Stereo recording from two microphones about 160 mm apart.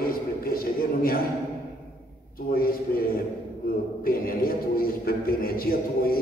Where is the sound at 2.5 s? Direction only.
65° left (ahead or behind).